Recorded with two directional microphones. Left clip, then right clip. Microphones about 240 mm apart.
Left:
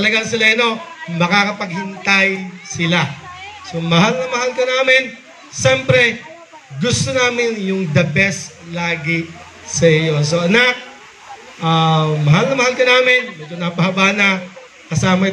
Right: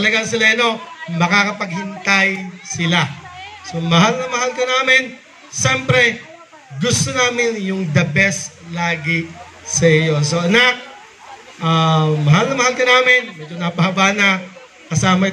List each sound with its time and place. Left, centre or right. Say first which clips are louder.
0.0 s a man's voice: even; right